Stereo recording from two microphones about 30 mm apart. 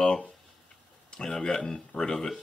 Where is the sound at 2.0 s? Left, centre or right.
Left.